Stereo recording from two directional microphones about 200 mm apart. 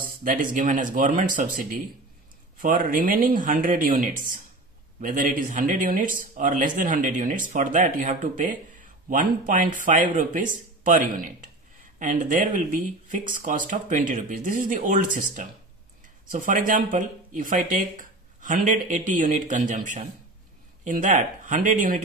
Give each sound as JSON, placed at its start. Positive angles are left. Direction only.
{"t": 0.0, "sound": "speech", "side_deg": -40}